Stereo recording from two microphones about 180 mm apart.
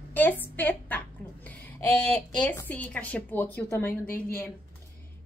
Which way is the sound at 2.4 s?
10° left (ahead or behind).